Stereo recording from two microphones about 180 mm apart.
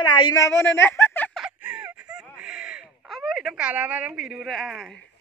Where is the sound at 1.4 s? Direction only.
5° right (ahead or behind).